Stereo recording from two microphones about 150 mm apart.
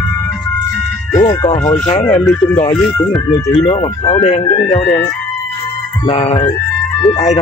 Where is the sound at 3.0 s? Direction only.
10° left (ahead or behind).